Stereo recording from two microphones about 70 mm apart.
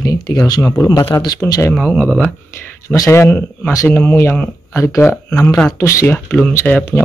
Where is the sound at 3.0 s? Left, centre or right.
Left.